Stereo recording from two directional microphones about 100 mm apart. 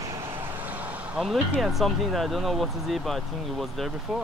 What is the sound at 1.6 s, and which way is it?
Speech, centre (ahead or behind).